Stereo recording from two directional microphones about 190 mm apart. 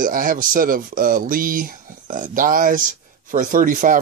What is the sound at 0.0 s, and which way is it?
Speech, 45° right (ahead or behind).